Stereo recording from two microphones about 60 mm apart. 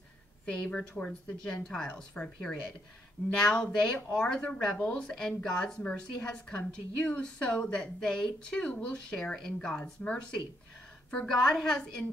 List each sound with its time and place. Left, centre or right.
0.5 s speech: centre
1.9 s speech: left